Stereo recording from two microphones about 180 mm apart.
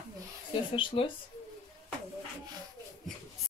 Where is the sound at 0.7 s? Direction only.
30° left (ahead or behind).